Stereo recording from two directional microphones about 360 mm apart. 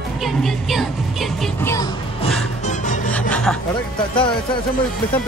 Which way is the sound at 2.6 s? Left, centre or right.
Left.